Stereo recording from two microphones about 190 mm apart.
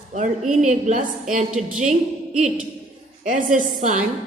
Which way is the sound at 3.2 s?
40° right (ahead or behind).